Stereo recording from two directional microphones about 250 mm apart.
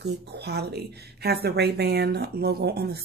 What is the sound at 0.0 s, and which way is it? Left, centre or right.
A woman's voice, right.